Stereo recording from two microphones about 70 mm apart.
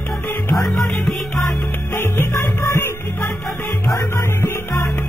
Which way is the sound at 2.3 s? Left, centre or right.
Left.